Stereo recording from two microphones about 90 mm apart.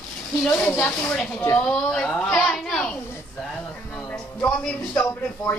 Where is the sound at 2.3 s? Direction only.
Centre (ahead or behind).